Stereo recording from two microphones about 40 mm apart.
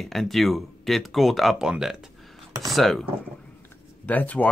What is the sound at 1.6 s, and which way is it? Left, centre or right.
Speech, centre.